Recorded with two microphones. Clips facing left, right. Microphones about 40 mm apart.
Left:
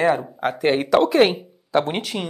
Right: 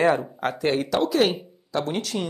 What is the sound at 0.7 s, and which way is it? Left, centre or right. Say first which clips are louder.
Speech: left 7 dB; left.